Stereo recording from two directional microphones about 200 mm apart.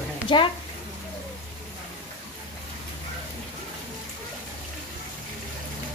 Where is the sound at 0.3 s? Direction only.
25° left (ahead or behind).